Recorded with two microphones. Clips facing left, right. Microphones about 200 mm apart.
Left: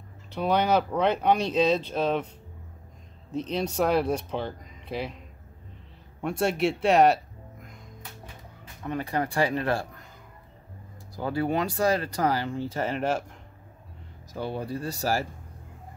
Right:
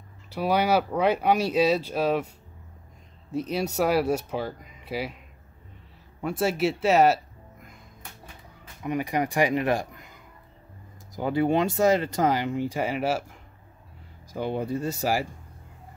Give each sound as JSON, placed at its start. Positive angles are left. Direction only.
{"t": 0.3, "sound": "speech", "side_deg": -10}
{"t": 3.3, "sound": "speech", "side_deg": -10}
{"t": 6.2, "sound": "speech", "side_deg": 0}
{"t": 8.8, "sound": "speech", "side_deg": -15}
{"t": 11.1, "sound": "speech", "side_deg": -20}
{"t": 14.3, "sound": "speech", "side_deg": -20}